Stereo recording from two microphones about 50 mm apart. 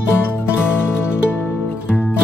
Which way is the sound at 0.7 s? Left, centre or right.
Left.